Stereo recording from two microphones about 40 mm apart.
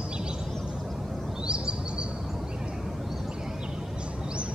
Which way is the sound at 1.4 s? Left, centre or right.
Right.